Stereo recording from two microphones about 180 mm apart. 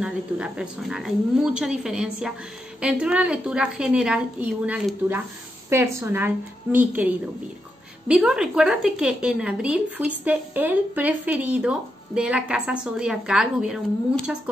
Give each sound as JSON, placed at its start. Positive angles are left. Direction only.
{"t": 0.0, "sound": "a woman's voice", "side_deg": -5}